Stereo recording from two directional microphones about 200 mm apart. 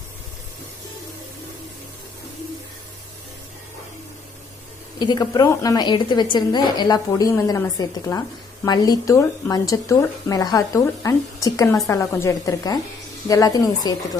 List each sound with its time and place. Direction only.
4.9 s a woman's voice: 20° left (ahead or behind)